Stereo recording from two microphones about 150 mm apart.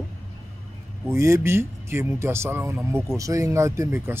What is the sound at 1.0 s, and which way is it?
Speech, 20° right (ahead or behind).